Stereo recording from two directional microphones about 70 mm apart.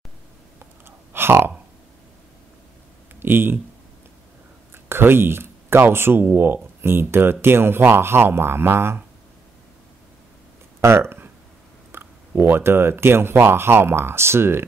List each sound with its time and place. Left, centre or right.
0.8 s a sound: right
3.2 s speech: right
4.8 s speech: right
10.8 s speech: right